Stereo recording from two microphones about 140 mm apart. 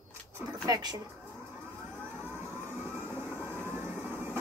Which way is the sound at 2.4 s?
15° right (ahead or behind).